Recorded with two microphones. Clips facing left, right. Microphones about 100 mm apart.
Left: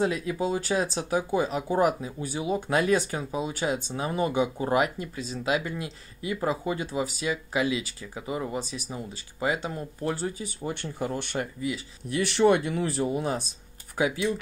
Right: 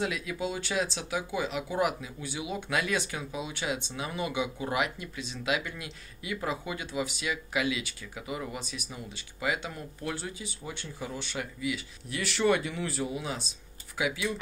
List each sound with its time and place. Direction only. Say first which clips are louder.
0.0 s speech: left 6 dB; 35° left (ahead or behind); by 11.4 s 55° left (ahead or behind)
11.6 s speech: left 2 dB; 35° left (ahead or behind)
12.2 s speech: left 5 dB; 50° left (ahead or behind)